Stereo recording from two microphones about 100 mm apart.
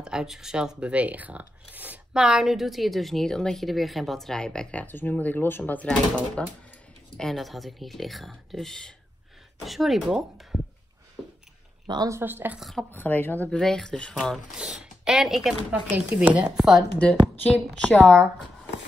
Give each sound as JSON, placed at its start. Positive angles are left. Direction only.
{"t": 0.0, "sound": "speech", "side_deg": -5}
{"t": 2.1, "sound": "speech", "side_deg": -5}
{"t": 12.1, "sound": "a woman's voice", "side_deg": -20}
{"t": 12.5, "sound": "speech", "side_deg": 0}
{"t": 12.9, "sound": "speech", "side_deg": 20}
{"t": 13.5, "sound": "a woman's voice", "side_deg": 5}
{"t": 14.6, "sound": "speech", "side_deg": -5}
{"t": 15.9, "sound": "speech", "side_deg": -15}
{"t": 17.0, "sound": "a woman's voice", "side_deg": 10}